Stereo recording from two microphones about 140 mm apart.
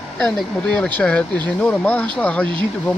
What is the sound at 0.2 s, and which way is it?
Speech, 5° left (ahead or behind).